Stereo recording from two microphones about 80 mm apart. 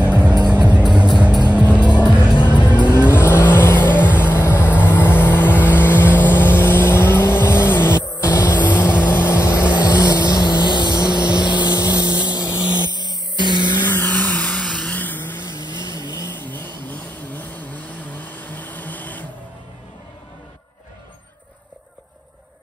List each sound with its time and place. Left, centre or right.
0.0 s music: centre
0.8 s music: centre
2.0 s music: centre
2.3 s music: left
2.9 s vehicle: left
7.9 s music: left
8.7 s vehicle: left
9.8 s vehicle: left
12.9 s music: left
13.8 s a sound: left
14.8 s vehicle: centre
15.8 s vehicle: left
16.5 s vehicle: left